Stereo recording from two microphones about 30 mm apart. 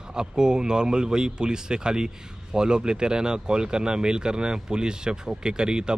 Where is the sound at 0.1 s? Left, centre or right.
Right.